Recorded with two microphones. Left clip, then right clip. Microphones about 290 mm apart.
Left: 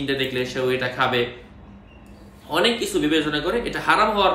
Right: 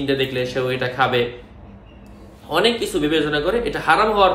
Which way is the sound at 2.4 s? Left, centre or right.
Centre.